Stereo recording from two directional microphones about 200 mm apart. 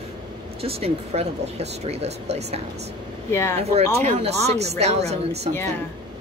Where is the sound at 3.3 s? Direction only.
15° left (ahead or behind).